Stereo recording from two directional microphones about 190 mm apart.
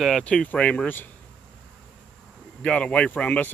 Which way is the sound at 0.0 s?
5° left (ahead or behind).